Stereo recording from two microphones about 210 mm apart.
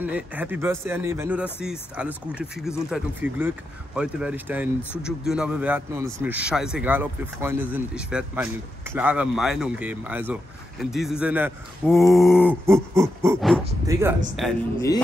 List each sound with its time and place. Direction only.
0.0 s speech: 5° right (ahead or behind)
14.4 s speech: centre (ahead or behind)